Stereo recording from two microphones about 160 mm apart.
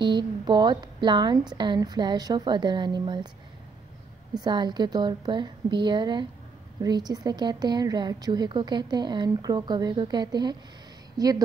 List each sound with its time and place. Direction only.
0.0 s speech: 30° right (ahead or behind)
4.3 s speech: 25° right (ahead or behind)